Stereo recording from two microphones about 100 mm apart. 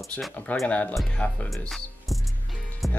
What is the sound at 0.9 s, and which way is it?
Speech, centre (ahead or behind).